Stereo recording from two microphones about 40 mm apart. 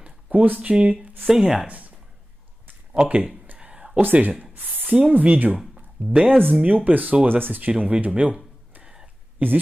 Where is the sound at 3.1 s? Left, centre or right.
Right.